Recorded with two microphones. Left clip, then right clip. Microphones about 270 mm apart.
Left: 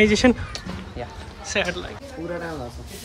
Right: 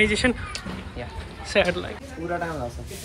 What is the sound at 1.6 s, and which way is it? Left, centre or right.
Speech, centre.